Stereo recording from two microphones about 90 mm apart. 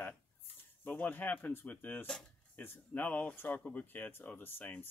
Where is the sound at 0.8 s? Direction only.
20° left (ahead or behind).